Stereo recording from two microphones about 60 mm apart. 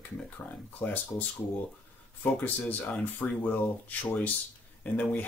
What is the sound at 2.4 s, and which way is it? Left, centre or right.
Speech, left.